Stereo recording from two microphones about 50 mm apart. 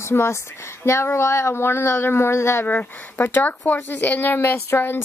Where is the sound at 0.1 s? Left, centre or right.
Left.